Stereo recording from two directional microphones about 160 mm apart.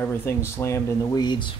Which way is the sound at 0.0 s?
15° left (ahead or behind).